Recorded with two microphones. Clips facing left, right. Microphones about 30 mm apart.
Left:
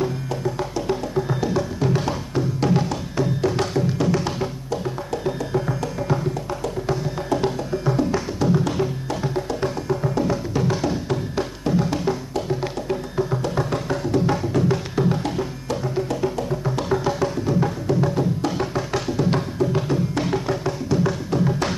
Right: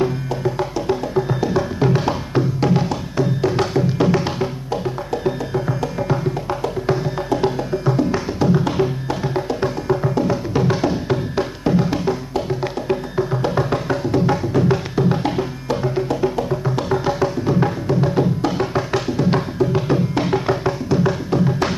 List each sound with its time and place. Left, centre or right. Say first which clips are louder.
0.0 s music: right 4 dB; centre
5.1 s music: right 2 dB; centre